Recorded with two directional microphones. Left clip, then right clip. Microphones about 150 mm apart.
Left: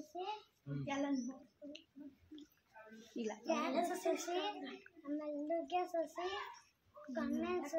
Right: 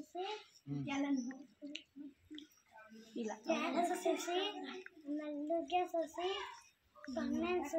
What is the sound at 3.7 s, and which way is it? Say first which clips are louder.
Speech: right 1 dB; 5° left (ahead or behind).